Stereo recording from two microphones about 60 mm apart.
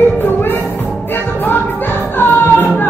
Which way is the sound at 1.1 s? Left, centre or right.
Left.